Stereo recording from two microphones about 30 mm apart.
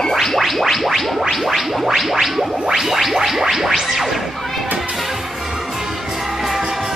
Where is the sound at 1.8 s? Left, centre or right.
Centre.